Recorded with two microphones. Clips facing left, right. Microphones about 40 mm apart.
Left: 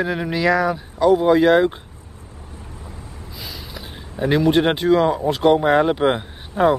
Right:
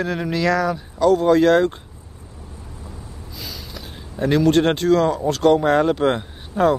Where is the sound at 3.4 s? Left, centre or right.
Centre.